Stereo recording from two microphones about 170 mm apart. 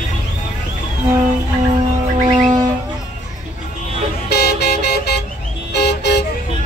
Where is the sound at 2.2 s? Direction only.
25° right (ahead or behind).